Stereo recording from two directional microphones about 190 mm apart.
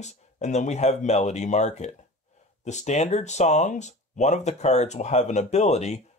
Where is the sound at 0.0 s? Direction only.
35° left (ahead or behind).